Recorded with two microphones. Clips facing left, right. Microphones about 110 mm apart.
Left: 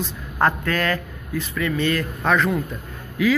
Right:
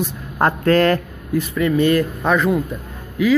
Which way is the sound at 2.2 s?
10° right (ahead or behind).